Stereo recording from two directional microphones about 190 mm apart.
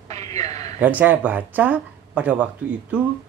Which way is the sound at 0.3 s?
35° right (ahead or behind).